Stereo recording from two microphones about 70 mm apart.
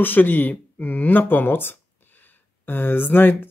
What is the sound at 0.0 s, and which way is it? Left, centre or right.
Speech, left.